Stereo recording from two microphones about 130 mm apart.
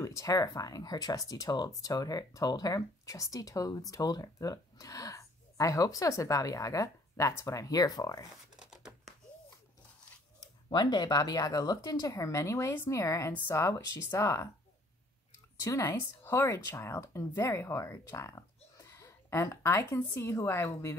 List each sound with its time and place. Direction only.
0.0 s speech: 25° left (ahead or behind)
8.5 s a sound: 5° right (ahead or behind)
10.7 s speech: 35° left (ahead or behind)
15.6 s speech: 20° left (ahead or behind)